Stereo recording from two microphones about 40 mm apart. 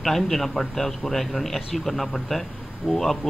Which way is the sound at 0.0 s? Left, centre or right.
Centre.